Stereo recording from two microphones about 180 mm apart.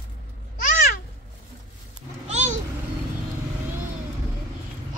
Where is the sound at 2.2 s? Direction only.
40° right (ahead or behind).